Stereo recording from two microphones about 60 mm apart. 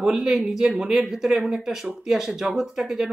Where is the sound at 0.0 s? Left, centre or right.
Centre.